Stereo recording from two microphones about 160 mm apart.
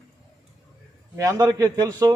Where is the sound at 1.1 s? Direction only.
20° right (ahead or behind).